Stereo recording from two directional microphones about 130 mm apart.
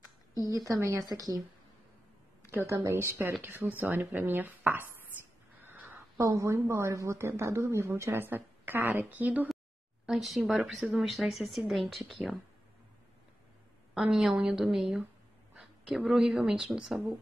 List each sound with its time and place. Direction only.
0.3 s a sound: 25° left (ahead or behind)
0.7 s a woman's voice: 25° right (ahead or behind)
2.5 s a woman's voice: 20° right (ahead or behind)
10.0 s speech: centre (ahead or behind)
13.9 s speech: 5° right (ahead or behind)